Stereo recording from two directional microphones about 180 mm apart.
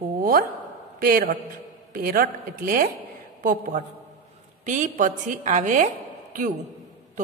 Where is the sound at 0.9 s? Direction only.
55° right (ahead or behind).